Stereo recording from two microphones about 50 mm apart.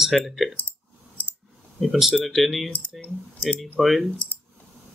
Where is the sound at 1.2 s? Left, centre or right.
Left.